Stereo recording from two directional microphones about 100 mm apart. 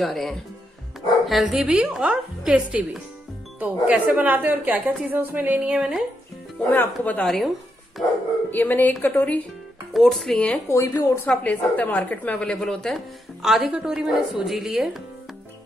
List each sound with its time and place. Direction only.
0.0 s a woman's voice: centre (ahead or behind)
7.0 s speech: 15° left (ahead or behind)
7.2 s a woman's voice: centre (ahead or behind)
8.5 s speech: 20° left (ahead or behind)
9.9 s a woman's voice: 5° left (ahead or behind)
10.7 s speech: 30° left (ahead or behind)
11.2 s a woman's voice: 15° left (ahead or behind); by 14.9 s 5° right (ahead or behind)